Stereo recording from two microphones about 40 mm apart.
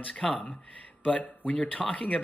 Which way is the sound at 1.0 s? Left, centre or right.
Left.